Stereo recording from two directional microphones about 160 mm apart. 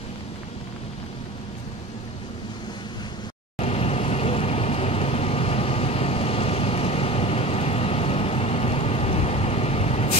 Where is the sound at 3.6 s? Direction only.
40° left (ahead or behind).